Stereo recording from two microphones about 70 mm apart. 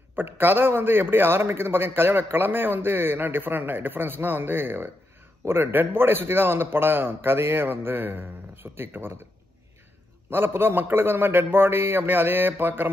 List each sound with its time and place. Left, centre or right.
0.1 s a man's voice: right
10.3 s a man's voice: right